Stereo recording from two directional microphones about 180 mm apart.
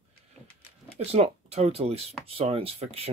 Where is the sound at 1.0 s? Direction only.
35° right (ahead or behind).